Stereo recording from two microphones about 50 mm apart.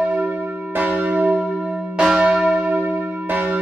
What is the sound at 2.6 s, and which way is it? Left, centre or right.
Church bell, right.